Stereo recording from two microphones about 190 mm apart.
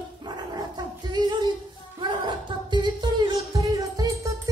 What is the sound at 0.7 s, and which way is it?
Singing, 20° right (ahead or behind).